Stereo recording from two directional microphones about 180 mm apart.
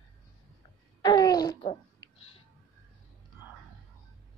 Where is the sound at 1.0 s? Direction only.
20° left (ahead or behind).